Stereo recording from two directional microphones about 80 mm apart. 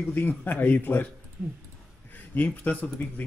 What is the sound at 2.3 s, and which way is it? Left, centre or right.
Speech, left.